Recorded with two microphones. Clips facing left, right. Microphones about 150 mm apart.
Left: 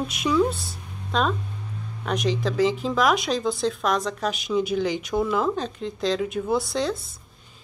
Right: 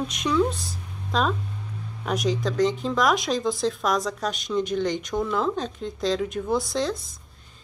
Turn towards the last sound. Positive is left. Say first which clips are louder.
# left 1 dB
turn(degrees=0)  # may be behind; listen again after turning